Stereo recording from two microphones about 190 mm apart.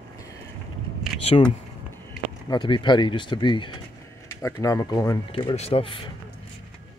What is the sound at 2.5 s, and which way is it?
Speech, 25° left (ahead or behind).